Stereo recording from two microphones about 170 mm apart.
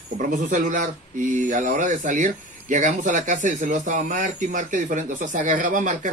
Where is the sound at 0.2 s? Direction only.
50° right (ahead or behind).